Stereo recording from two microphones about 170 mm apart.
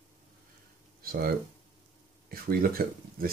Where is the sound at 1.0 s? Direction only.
60° right (ahead or behind).